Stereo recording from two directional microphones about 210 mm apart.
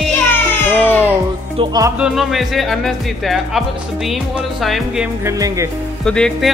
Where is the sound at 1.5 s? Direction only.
15° right (ahead or behind).